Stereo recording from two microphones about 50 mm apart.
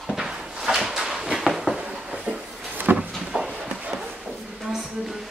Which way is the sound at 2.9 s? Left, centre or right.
Right.